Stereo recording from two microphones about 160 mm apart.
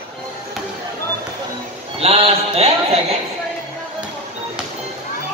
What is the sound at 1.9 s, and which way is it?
Speech, 40° right (ahead or behind).